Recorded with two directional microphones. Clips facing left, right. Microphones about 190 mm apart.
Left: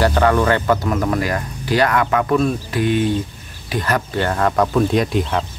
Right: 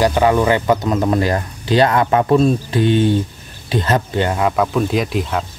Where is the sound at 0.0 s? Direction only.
15° right (ahead or behind).